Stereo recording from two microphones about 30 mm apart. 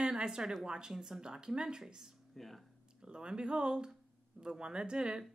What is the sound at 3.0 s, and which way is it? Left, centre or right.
Speech, right.